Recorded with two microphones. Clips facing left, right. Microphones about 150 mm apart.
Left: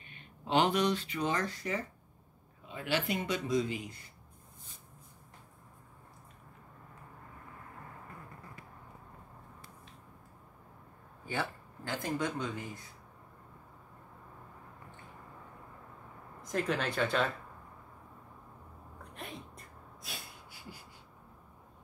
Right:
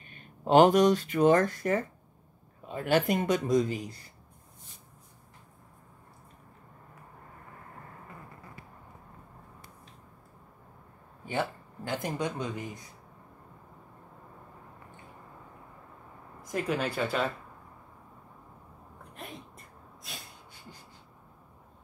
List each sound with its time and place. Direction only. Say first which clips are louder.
0.0 s a man's voice: right 10 dB; 45° right (ahead or behind)
11.2 s speech: right 5 dB; 15° right (ahead or behind)
16.5 s speech: right 2 dB; 5° right (ahead or behind)
19.1 s a sound: right 1 dB; centre (ahead or behind)